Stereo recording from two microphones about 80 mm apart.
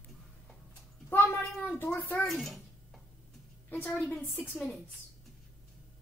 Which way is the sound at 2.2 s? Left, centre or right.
Centre.